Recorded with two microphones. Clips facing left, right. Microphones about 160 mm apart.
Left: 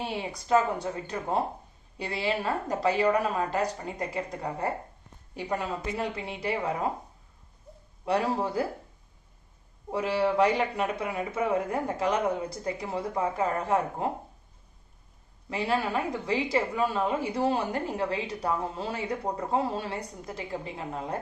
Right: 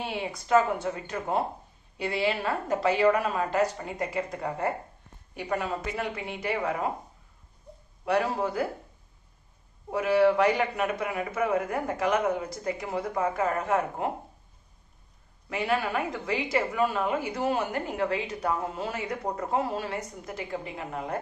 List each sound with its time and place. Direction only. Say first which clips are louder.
0.3 s speech: right 2 dB; 35° left (ahead or behind)
3.0 s a woman's voice: right 2 dB; 20° left (ahead or behind)
3.4 s speech: right 3 dB; 35° left (ahead or behind)
5.9 s speech: even; 30° left (ahead or behind)
8.0 s a woman's voice: right 1 dB; 30° left (ahead or behind)
9.8 s a woman's voice: right 4 dB; 30° left (ahead or behind)
15.5 s a woman's voice: even; 30° left (ahead or behind)